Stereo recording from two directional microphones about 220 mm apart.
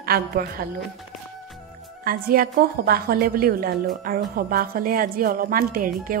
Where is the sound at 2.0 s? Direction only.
40° right (ahead or behind).